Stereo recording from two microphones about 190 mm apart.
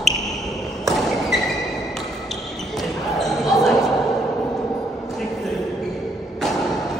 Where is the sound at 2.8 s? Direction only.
Centre (ahead or behind).